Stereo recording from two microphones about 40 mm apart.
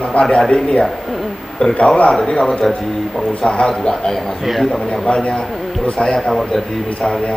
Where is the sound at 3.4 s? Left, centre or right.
Left.